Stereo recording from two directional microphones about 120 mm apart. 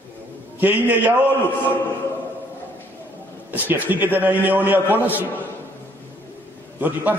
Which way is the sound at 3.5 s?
15° right (ahead or behind).